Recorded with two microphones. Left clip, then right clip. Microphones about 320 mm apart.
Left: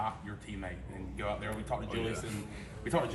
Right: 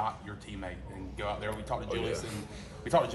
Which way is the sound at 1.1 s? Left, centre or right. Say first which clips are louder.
Right 2 dB; right.